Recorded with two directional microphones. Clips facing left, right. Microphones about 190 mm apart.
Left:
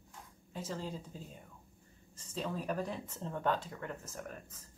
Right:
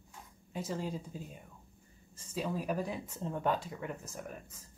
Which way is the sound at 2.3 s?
10° right (ahead or behind).